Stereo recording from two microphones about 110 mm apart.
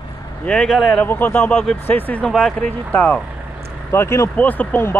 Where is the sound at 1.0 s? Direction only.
15° left (ahead or behind).